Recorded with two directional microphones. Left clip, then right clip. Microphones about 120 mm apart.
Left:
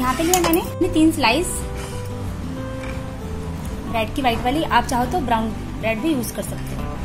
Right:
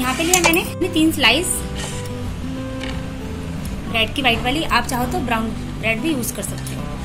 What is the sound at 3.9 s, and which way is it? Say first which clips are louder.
A woman's voice: right 3 dB; 80° left.